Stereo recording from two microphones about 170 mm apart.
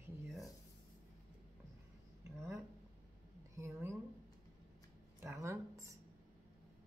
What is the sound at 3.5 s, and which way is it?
Speech, 15° right (ahead or behind).